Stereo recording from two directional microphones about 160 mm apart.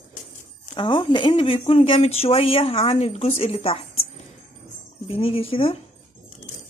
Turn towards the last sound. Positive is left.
turn(degrees=35)  # may be behind; listen again after turning